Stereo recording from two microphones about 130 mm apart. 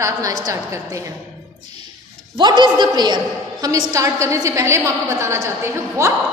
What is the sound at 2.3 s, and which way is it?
A woman's voice, 40° right (ahead or behind).